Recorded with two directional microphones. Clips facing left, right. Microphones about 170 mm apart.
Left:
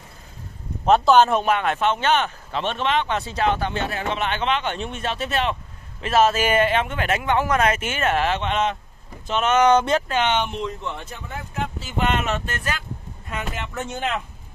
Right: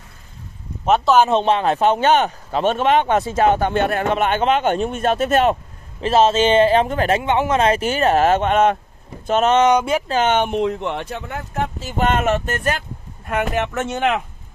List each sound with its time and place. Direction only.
0.8 s speech: centre (ahead or behind)
1.3 s speech: 30° right (ahead or behind); by 5.6 s 45° right (ahead or behind)
5.9 s speech: 30° right (ahead or behind); by 8.7 s 50° right (ahead or behind)
9.3 s speech: 40° right (ahead or behind)
9.6 s speech: 15° right (ahead or behind)
10.0 s speech: 40° right (ahead or behind)
13.3 s speech: 65° right (ahead or behind)